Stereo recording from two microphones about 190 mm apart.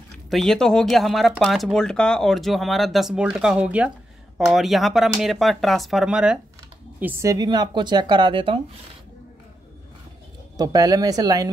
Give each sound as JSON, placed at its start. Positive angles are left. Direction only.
{"t": 0.3, "sound": "speech", "side_deg": 0}
{"t": 10.6, "sound": "speech", "side_deg": -20}